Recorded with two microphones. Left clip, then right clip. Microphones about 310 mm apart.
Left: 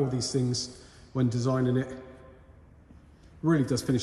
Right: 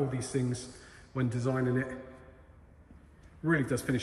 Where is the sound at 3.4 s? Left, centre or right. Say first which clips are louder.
Left 3 dB; centre.